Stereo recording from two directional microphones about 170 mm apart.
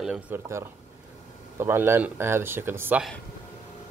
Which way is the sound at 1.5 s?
15° right (ahead or behind).